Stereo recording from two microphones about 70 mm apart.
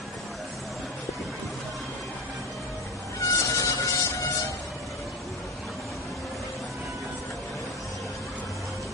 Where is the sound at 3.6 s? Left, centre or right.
Left.